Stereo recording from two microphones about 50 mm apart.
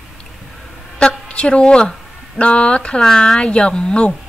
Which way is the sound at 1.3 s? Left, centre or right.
Left.